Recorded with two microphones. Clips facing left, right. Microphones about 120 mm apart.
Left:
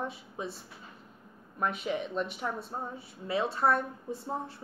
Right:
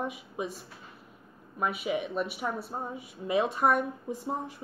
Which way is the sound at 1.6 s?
5° right (ahead or behind).